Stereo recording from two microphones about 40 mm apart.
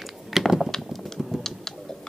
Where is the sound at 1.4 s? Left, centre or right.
Centre.